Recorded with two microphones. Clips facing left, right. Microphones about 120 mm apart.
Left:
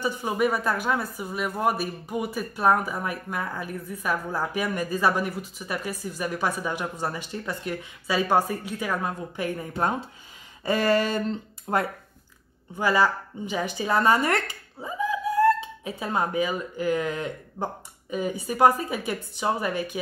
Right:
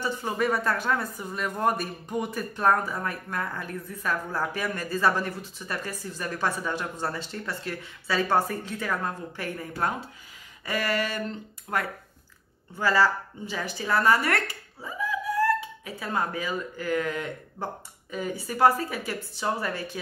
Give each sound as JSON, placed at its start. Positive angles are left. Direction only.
{"t": 0.0, "sound": "speech", "side_deg": 15}
{"t": 10.6, "sound": "a sound", "side_deg": 25}
{"t": 11.7, "sound": "speech", "side_deg": 30}
{"t": 12.7, "sound": "speech", "side_deg": 15}